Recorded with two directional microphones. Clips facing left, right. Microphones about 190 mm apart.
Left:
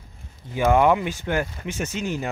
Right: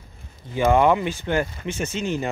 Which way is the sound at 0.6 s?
10° left (ahead or behind).